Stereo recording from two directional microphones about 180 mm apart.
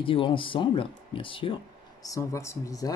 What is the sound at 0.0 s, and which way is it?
Speech, 30° left (ahead or behind).